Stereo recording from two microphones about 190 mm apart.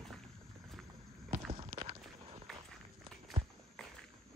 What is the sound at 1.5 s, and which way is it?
Walk, 30° right (ahead or behind).